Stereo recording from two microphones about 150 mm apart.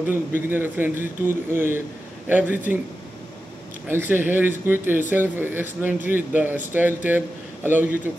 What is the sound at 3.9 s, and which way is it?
Speech, 15° right (ahead or behind).